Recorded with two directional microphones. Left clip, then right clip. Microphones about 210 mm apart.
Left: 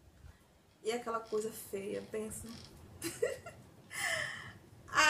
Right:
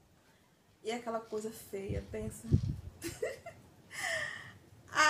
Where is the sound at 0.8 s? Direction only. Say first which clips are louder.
Left 1 dB; 5° left (ahead or behind).